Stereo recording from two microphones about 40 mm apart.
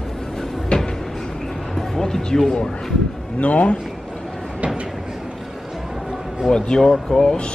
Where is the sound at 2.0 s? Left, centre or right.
Centre.